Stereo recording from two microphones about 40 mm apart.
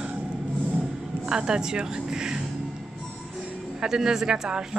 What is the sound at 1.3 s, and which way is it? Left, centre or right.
Speech, centre.